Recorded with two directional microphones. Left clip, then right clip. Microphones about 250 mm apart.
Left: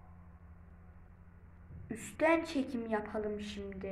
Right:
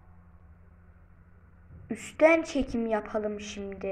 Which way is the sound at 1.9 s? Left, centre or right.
Centre.